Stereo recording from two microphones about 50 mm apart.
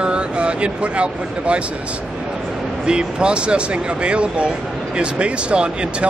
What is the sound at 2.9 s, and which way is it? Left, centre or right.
Speech, centre.